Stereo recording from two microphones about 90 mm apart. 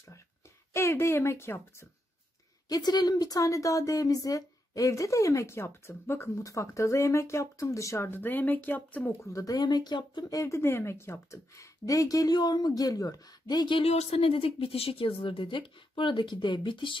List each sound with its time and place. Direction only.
0.7 s a woman's voice: 30° left (ahead or behind)
2.7 s a woman's voice: 50° left (ahead or behind)
8.1 s a woman's voice: 20° left (ahead or behind)
9.2 s speech: 40° left (ahead or behind); by 10.2 s 55° left (ahead or behind)
10.3 s speech: 35° left (ahead or behind); by 17.0 s 70° left (ahead or behind)